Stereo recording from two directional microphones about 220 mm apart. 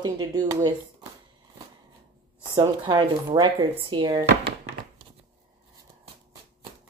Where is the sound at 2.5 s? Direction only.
20° right (ahead or behind).